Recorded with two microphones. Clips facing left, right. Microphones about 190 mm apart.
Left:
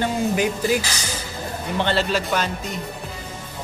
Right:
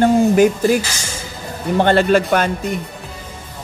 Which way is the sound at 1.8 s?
50° right (ahead or behind).